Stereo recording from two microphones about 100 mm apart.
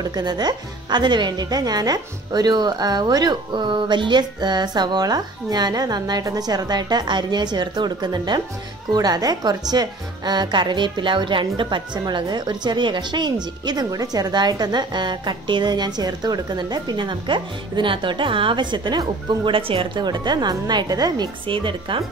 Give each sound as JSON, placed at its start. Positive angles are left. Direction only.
{"t": 0.0, "sound": "a woman's voice", "side_deg": -45}
{"t": 21.5, "sound": "speech", "side_deg": -55}